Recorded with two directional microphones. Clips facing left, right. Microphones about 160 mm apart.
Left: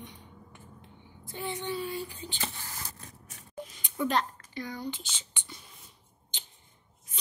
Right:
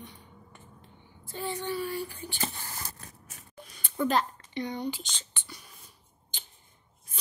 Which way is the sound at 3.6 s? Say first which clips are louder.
Left 4 dB; 20° left (ahead or behind).